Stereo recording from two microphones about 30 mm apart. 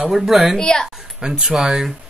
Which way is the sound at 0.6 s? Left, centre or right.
Left.